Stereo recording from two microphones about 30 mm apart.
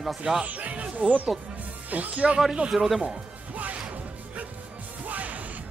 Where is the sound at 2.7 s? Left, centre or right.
Centre.